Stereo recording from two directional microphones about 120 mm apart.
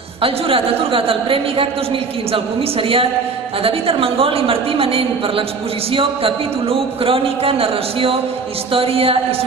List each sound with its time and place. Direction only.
0.2 s a woman's voice: 50° right (ahead or behind)
7.1 s a woman's voice: 50° right (ahead or behind)